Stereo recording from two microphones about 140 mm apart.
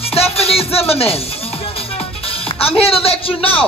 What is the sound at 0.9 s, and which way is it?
Speech, 45° left (ahead or behind).